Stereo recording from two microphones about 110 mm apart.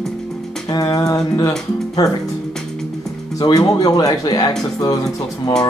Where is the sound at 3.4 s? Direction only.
35° left (ahead or behind).